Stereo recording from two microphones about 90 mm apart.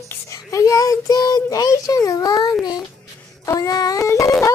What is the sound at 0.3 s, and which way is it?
A child's voice, 35° left (ahead or behind).